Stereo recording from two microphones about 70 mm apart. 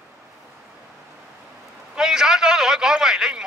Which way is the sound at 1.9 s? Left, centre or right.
Centre.